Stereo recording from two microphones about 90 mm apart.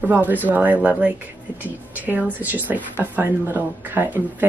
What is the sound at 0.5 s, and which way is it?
A woman's voice, 20° right (ahead or behind).